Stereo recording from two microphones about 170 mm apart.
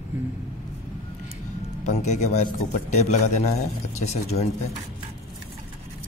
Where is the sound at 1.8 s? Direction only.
40° left (ahead or behind).